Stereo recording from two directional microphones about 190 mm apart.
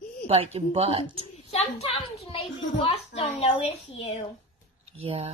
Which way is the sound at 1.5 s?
30° left (ahead or behind).